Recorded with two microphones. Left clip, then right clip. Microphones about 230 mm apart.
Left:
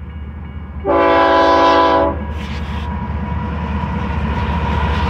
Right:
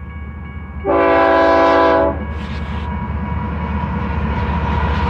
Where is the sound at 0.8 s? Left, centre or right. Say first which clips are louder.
Left 1 dB; left.